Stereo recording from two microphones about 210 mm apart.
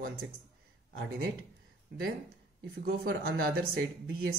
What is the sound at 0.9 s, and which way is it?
Speech, 50° right (ahead or behind).